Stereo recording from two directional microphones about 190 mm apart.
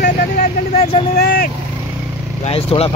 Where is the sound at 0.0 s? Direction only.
40° left (ahead or behind).